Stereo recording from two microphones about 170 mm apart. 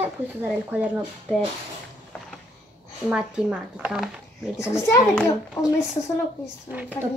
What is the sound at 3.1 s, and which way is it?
Speech, 5° right (ahead or behind).